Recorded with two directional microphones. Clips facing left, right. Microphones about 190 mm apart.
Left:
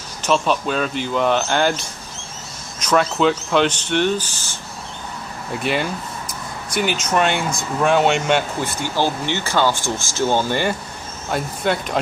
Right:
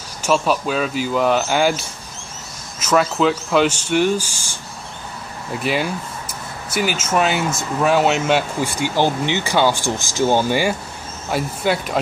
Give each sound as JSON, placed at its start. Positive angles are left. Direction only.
{"t": 0.2, "sound": "speech", "side_deg": -5}